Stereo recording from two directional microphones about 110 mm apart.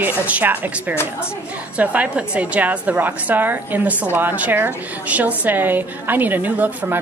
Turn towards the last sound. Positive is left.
turn(degrees=-15)  # may be behind; listen again after turning